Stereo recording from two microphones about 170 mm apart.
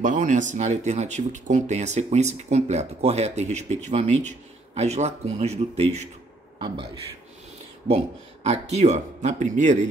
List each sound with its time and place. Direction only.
0.0 s speech: 50° right (ahead or behind)
8.5 s speech: 40° right (ahead or behind)